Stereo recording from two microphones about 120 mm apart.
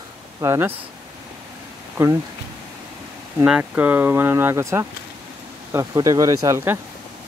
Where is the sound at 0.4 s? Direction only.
20° right (ahead or behind).